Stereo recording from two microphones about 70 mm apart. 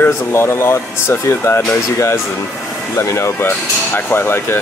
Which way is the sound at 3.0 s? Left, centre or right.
Left.